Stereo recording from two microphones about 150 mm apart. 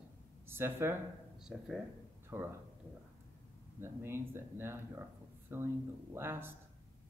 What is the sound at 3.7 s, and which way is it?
Speech, 15° right (ahead or behind).